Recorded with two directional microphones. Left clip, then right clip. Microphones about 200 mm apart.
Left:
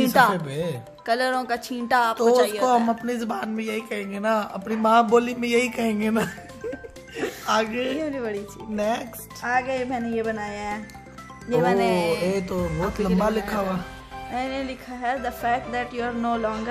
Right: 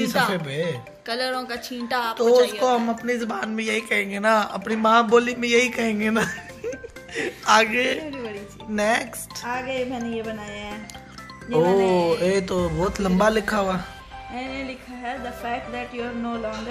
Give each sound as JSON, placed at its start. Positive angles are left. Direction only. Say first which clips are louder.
{"t": 0.0, "sound": "music", "louder": "left 4 dB", "side_deg": 50}
{"t": 0.3, "sound": "speech", "louder": "even", "side_deg": 10}
{"t": 1.0, "sound": "speech", "louder": "left 3 dB", "side_deg": 50}
{"t": 2.9, "sound": "a man's voice", "louder": "right 1 dB", "side_deg": 10}
{"t": 9.5, "sound": "speech", "louder": "left 3 dB", "side_deg": 45}
{"t": 11.8, "sound": "music", "louder": "right 2 dB", "side_deg": 55}
{"t": 12.3, "sound": "a man's voice", "louder": "right 4 dB", "side_deg": 0}
{"t": 14.3, "sound": "music", "louder": "left 3 dB", "side_deg": 60}